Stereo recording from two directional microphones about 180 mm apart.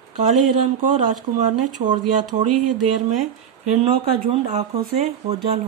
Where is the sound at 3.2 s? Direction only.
40° right (ahead or behind).